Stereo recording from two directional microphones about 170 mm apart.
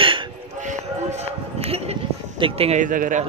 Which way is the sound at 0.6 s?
45° right (ahead or behind).